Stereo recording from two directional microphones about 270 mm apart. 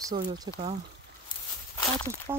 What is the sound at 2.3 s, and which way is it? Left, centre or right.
Speech, centre.